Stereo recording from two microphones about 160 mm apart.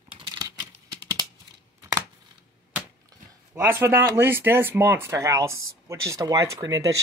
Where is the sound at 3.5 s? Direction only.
15° right (ahead or behind).